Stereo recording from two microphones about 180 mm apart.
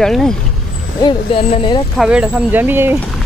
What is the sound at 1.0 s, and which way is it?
Speech, 30° left (ahead or behind).